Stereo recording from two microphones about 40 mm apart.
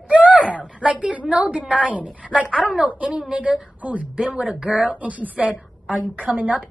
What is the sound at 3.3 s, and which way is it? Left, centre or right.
Speech, right.